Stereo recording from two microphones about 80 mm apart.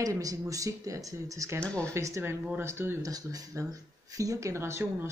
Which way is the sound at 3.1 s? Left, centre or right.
Right.